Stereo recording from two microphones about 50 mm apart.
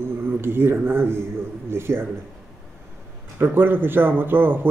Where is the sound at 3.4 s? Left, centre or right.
Right.